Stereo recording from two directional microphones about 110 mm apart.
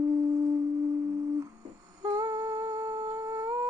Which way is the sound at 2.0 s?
35° right (ahead or behind).